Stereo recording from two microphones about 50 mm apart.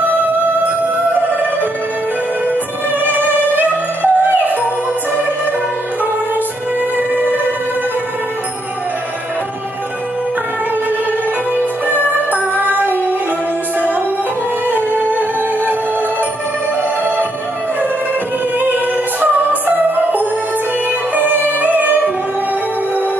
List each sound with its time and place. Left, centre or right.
3.0 s music: right
12.0 s music: right
14.7 s music: right
19.5 s music: right